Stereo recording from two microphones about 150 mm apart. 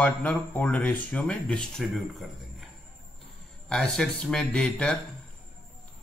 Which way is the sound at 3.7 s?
5° left (ahead or behind).